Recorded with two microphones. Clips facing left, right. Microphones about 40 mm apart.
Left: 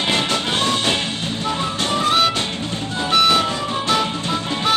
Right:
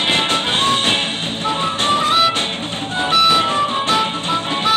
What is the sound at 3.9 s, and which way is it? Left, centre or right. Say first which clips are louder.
Music: right 2 dB; right.